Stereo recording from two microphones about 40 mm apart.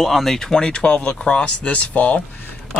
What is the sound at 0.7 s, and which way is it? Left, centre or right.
Speech, left.